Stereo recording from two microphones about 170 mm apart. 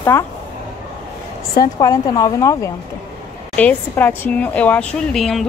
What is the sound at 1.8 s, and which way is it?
A woman's voice, 20° left (ahead or behind).